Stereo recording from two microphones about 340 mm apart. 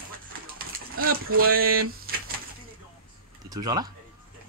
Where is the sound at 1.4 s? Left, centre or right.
Right.